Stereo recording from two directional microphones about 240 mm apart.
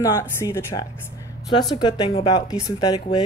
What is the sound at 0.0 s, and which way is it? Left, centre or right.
A woman's voice, centre.